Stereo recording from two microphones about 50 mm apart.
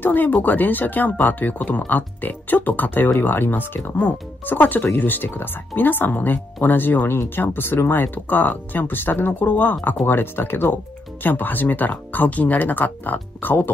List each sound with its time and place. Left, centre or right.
0.0 s speech: left